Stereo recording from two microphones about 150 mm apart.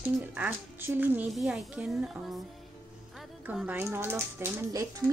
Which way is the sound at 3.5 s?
10° right (ahead or behind).